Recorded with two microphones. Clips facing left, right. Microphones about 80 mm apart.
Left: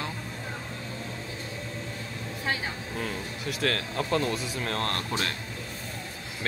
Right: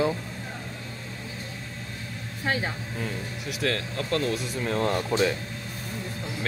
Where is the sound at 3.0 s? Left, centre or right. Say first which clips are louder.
Left 1 dB; centre.